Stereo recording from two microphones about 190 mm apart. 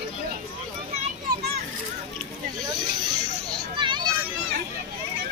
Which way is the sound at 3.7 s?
25° right (ahead or behind).